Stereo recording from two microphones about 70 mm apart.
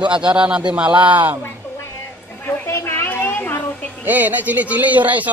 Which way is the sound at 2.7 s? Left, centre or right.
Left.